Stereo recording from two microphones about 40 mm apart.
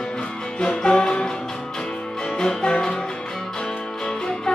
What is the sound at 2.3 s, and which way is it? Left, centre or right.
Music, centre.